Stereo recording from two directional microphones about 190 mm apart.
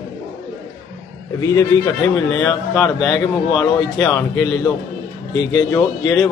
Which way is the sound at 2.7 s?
Centre (ahead or behind).